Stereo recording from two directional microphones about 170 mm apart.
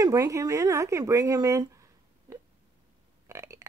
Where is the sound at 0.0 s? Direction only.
20° right (ahead or behind).